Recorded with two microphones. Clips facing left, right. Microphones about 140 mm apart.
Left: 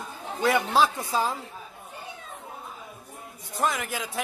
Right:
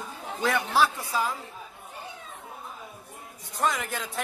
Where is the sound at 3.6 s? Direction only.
5° left (ahead or behind).